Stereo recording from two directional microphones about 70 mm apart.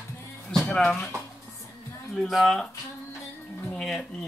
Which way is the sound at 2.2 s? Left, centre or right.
Centre.